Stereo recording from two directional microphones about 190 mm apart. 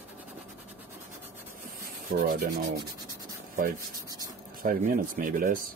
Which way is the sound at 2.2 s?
50° right (ahead or behind).